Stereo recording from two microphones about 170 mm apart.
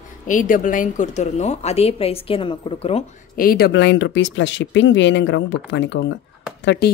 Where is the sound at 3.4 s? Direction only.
65° left (ahead or behind); by 6.2 s 90° left.